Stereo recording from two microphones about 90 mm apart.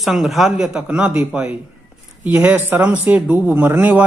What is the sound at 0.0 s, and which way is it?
Speech, centre (ahead or behind).